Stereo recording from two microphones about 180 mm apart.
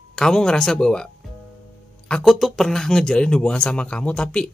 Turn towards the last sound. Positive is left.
turn(degrees=5)  # may be behind; listen again after turning